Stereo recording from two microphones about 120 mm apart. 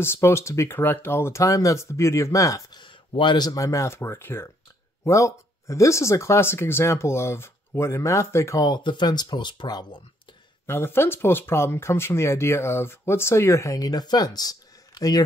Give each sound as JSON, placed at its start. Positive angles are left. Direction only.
{"t": 0.0, "sound": "speech", "side_deg": 20}
{"t": 2.8, "sound": "speech", "side_deg": 40}
{"t": 8.6, "sound": "speech", "side_deg": 40}
{"t": 10.7, "sound": "speech", "side_deg": 20}